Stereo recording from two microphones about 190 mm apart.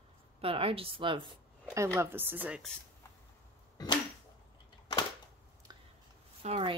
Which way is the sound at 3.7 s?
20° left (ahead or behind).